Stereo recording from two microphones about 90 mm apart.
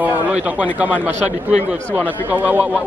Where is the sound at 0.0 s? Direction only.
15° right (ahead or behind).